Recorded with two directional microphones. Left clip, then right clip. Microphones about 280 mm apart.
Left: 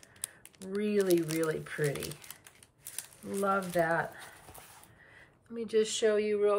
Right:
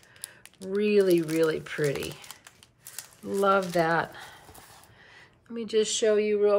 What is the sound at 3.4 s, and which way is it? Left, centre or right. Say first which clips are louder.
Speech: right 6 dB; centre.